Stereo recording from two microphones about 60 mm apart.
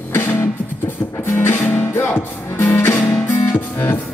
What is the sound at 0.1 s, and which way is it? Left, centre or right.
Music, left.